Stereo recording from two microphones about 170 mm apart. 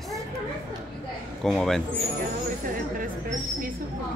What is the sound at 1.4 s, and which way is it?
Speech, centre (ahead or behind).